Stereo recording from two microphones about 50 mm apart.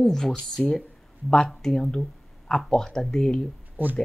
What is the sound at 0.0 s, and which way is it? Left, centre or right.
Speech, centre.